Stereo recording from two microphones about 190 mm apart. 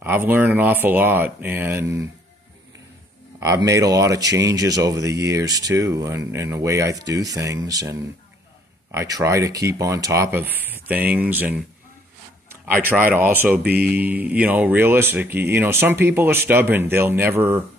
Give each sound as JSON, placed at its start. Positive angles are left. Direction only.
{"t": 0.0, "sound": "speech", "side_deg": -10}
{"t": 3.3, "sound": "speech", "side_deg": -15}
{"t": 12.6, "sound": "speech", "side_deg": -10}